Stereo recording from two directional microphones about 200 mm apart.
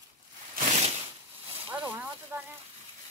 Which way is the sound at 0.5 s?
35° right (ahead or behind).